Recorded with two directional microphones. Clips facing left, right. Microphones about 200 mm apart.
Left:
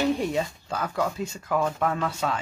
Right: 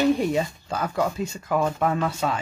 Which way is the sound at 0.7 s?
20° right (ahead or behind).